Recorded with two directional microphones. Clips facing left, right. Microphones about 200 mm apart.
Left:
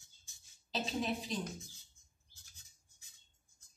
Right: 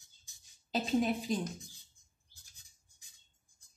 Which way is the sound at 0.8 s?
50° right (ahead or behind).